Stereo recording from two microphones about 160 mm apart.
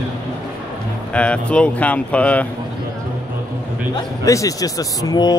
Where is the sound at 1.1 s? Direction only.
5° left (ahead or behind).